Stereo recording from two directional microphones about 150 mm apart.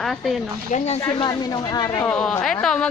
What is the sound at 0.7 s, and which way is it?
Speech, 45° left (ahead or behind).